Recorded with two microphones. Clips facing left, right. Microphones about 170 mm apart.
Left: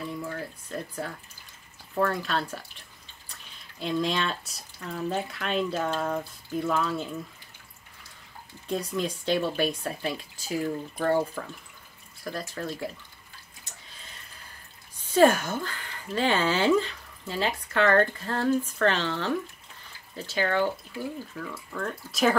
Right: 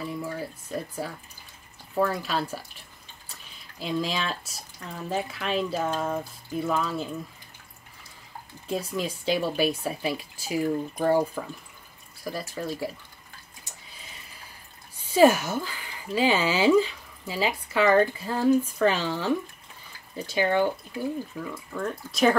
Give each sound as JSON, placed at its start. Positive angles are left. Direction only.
{"t": 0.0, "sound": "speech", "side_deg": -5}
{"t": 3.8, "sound": "speech", "side_deg": 0}
{"t": 8.6, "sound": "speech", "side_deg": -5}
{"t": 15.1, "sound": "speech", "side_deg": -5}